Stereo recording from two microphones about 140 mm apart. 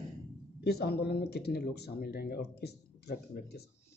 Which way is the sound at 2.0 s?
90° left.